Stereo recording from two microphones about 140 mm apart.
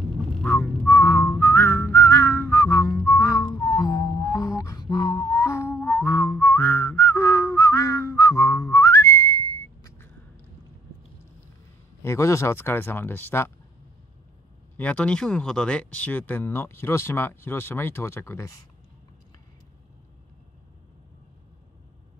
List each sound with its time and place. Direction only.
0.4 s whistling: 15° left (ahead or behind)
12.0 s speech: 20° left (ahead or behind)
14.8 s speech: 10° left (ahead or behind)